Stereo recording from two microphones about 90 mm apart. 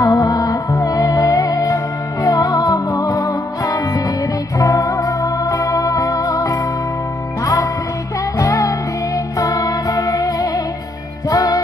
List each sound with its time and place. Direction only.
0.0 s music: 45° left (ahead or behind)
8.4 s music: 40° left (ahead or behind)